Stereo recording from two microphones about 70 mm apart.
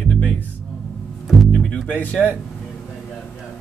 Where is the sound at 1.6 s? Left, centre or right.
Centre.